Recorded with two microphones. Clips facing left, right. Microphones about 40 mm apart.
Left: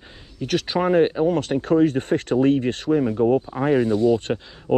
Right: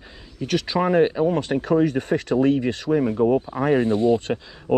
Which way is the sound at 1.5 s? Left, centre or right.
Right.